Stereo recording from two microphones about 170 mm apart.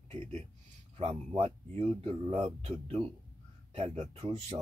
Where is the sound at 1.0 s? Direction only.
30° right (ahead or behind).